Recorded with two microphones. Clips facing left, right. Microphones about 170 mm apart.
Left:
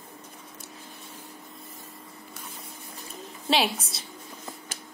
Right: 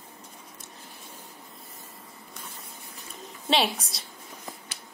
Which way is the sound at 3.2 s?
Centre (ahead or behind).